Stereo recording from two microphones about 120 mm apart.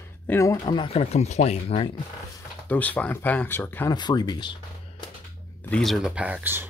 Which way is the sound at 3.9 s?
35° left (ahead or behind).